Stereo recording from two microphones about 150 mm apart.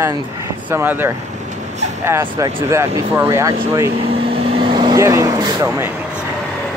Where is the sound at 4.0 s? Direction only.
40° right (ahead or behind).